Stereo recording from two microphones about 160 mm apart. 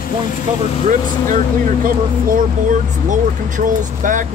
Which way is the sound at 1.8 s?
60° right (ahead or behind).